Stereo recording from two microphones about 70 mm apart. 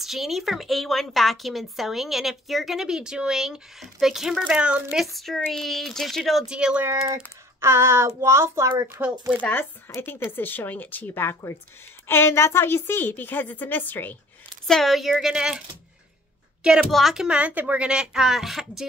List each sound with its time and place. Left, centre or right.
0.0 s a woman's voice: centre
4.9 s a woman's voice: centre
6.5 s a woman's voice: centre
7.6 s child singing: right
8.2 s a child's voice: right
9.4 s a woman's voice: left
9.9 s a woman's voice: left
14.7 s a woman's voice: centre
16.9 s a woman's voice: centre
17.4 s a woman's voice: right; by 18.9 s centre